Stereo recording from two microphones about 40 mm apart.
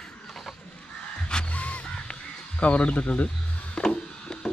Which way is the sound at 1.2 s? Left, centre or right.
Left.